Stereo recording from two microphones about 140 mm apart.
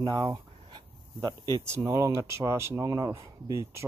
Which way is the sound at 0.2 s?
30° right (ahead or behind).